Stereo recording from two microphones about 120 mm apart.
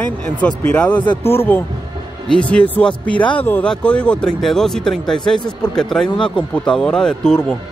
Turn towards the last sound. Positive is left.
turn(degrees=5)  # may be behind; listen again after turning